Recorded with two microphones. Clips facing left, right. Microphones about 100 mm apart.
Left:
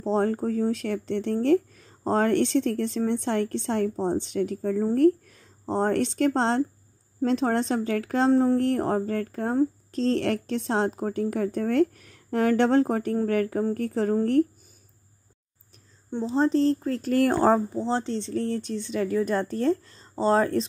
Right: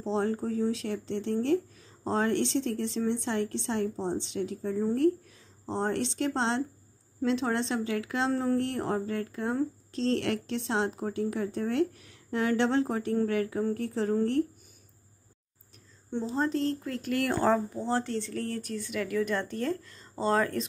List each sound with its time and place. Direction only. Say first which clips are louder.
0.0 s speech: left 5 dB; 50° left (ahead or behind)
8.3 s speech: left 9 dB; 30° left (ahead or behind)
8.5 s speech: left 6 dB; 40° left (ahead or behind)
16.3 s speech: left 8 dB; 30° left (ahead or behind)
17.7 s speech: left 3 dB; 20° left (ahead or behind)